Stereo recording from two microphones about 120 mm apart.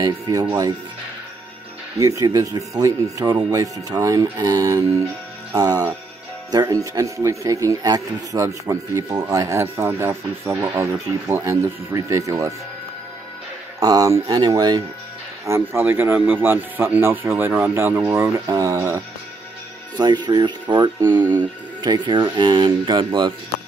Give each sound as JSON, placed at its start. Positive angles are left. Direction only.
{"t": 0.0, "sound": "speech", "side_deg": -30}
{"t": 2.0, "sound": "speech", "side_deg": -30}
{"t": 13.7, "sound": "speech", "side_deg": -30}
{"t": 15.4, "sound": "speech", "side_deg": -20}
{"t": 20.0, "sound": "speech", "side_deg": -35}
{"t": 21.1, "sound": "speech", "side_deg": -15}
{"t": 21.4, "sound": "speech", "side_deg": -40}